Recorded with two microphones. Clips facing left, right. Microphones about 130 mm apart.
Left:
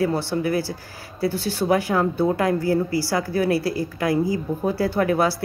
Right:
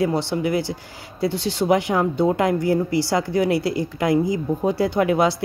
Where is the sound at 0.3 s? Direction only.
20° right (ahead or behind).